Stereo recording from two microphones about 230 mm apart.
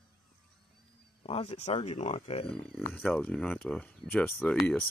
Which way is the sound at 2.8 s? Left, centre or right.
Centre.